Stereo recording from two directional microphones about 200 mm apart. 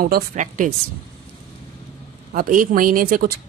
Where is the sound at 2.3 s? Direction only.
45° right (ahead or behind).